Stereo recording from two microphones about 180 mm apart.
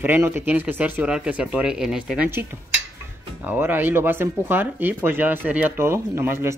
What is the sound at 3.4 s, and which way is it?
Speech, 10° right (ahead or behind).